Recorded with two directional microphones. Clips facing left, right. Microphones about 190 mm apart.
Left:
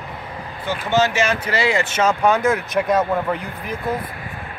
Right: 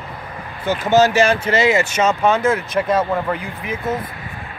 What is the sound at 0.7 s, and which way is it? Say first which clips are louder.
Speech: right 5 dB; 40° right (ahead or behind).